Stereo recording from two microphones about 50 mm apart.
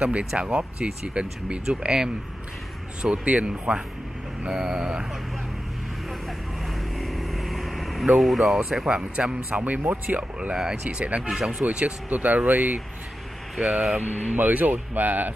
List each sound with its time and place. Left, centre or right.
0.0 s speech: right
3.0 s speech: right
6.2 s vehicle: centre
8.2 s speech: centre
8.8 s speech: centre
9.5 s speech: right
10.5 s speech: centre
11.2 s speech: centre
11.6 s speech: right
13.6 s speech: right